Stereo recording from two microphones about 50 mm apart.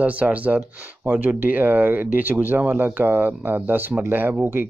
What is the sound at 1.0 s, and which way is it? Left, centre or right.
Speech, right.